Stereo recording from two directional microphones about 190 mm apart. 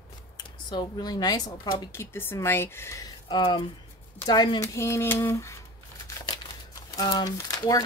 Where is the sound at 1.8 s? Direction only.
15° left (ahead or behind).